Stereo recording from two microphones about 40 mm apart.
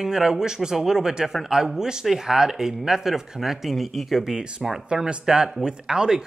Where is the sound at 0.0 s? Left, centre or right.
Centre.